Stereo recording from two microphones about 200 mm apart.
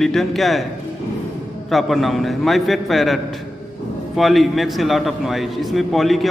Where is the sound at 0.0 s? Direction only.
Centre (ahead or behind).